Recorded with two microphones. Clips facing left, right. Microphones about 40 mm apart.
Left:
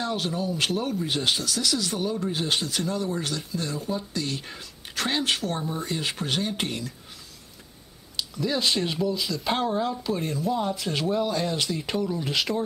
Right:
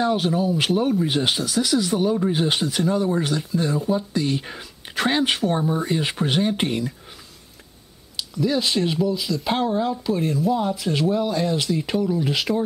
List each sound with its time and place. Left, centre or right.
0.0 s speech: centre
8.2 s speech: centre